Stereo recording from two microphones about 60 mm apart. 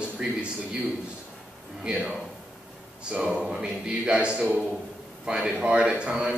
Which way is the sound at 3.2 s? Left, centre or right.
Centre.